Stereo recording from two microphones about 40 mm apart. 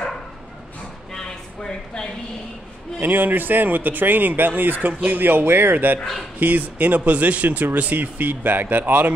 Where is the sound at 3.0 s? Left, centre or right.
Right.